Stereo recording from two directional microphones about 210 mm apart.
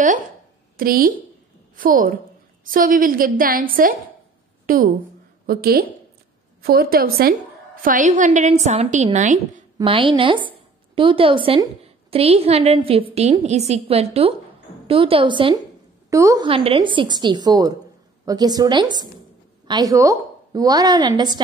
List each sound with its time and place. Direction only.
0.7 s a woman's voice: 45° right (ahead or behind); by 21.4 s 20° right (ahead or behind)